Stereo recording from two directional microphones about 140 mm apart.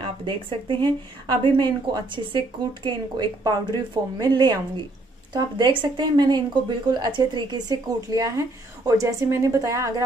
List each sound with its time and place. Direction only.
0.0 s speech: 35° right (ahead or behind)